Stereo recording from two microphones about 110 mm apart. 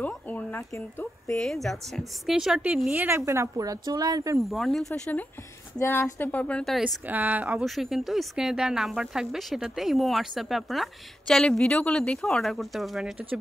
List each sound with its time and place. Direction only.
0.3 s speech: 15° left (ahead or behind)
1.3 s speech: 5° left (ahead or behind)
2.9 s speech: 20° right (ahead or behind); by 4.4 s 35° right (ahead or behind)
4.4 s speech: centre (ahead or behind)
5.9 s speech: 20° left (ahead or behind)
7.1 s speech: 15° right (ahead or behind)
7.6 s speech: centre (ahead or behind)